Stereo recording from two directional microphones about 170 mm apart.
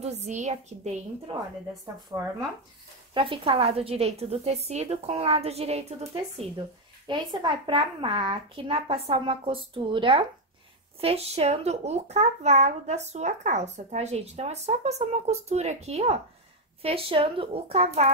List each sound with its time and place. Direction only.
0.0 s speech: 40° right (ahead or behind)
3.2 s speech: 30° right (ahead or behind)
7.1 s speech: 25° right (ahead or behind)